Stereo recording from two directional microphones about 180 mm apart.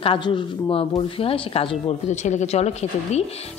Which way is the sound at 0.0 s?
30° left (ahead or behind).